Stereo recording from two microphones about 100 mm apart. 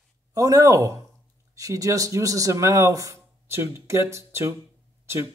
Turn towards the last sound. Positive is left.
turn(degrees=-25)  # may be behind; listen again after turning